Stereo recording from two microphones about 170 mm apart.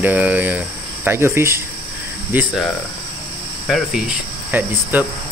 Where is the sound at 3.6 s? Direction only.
5° right (ahead or behind).